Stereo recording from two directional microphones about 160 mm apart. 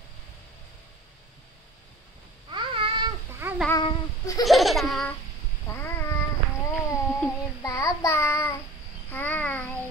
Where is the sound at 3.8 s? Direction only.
25° left (ahead or behind).